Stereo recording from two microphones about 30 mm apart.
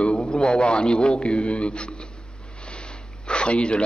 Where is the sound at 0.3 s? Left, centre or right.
Left.